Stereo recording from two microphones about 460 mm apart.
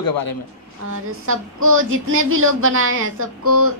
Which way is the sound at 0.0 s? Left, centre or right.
Left.